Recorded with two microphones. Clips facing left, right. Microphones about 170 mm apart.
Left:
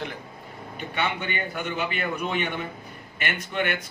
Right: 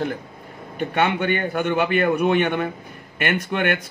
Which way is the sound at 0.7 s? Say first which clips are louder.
Right 8 dB; 55° right (ahead or behind).